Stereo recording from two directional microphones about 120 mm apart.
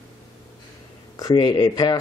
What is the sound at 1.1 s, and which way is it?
Speech, 35° left (ahead or behind).